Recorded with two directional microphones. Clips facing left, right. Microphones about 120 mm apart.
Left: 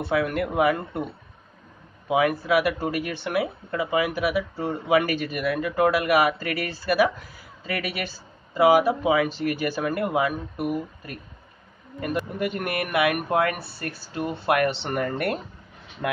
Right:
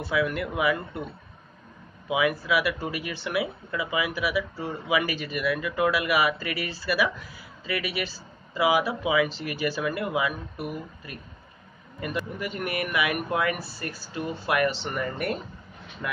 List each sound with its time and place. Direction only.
0.0 s speech: 50° left (ahead or behind)
2.0 s speech: 50° left (ahead or behind)
12.0 s speech: 50° left (ahead or behind)